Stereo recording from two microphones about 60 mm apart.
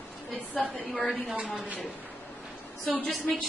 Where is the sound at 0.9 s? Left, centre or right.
Centre.